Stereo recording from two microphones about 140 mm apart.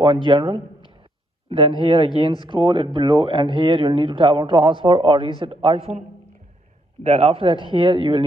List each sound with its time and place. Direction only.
0.0 s speech: 35° right (ahead or behind)
1.8 s speech: 35° right (ahead or behind)
7.0 s speech: 50° right (ahead or behind)